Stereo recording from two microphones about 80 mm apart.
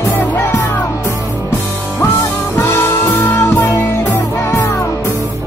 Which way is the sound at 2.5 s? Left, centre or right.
Left.